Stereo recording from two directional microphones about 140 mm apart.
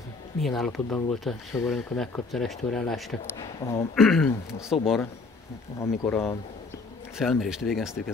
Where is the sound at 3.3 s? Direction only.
20° left (ahead or behind).